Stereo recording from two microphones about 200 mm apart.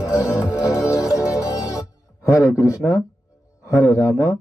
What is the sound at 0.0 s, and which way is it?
Music, 15° left (ahead or behind).